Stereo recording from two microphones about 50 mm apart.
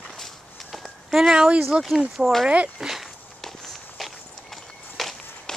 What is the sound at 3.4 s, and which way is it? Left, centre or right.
Walk, centre.